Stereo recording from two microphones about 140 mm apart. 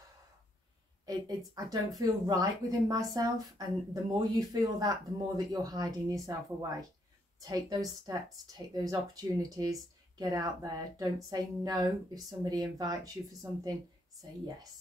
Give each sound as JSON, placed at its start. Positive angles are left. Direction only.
{"t": 1.0, "sound": "speech", "side_deg": -25}